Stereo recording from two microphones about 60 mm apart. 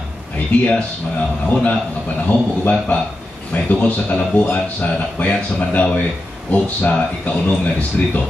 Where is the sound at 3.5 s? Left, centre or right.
Left.